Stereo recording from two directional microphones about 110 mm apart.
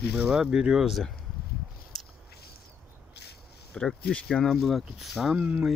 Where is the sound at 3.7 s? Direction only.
10° left (ahead or behind).